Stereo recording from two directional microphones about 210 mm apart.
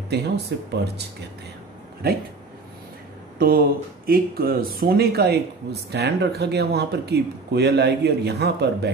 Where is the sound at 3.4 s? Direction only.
45° right (ahead or behind).